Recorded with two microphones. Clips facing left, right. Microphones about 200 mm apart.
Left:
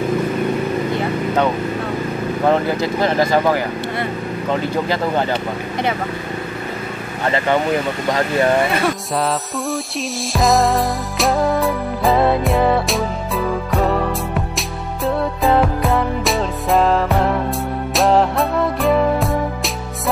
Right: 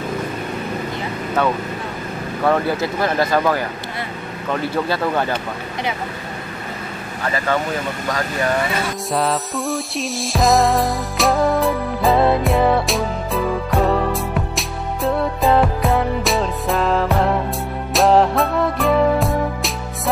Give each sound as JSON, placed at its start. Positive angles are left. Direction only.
{"t": 2.4, "sound": "speech", "side_deg": 20}
{"t": 7.3, "sound": "speech", "side_deg": 20}
{"t": 9.1, "sound": "music", "side_deg": 0}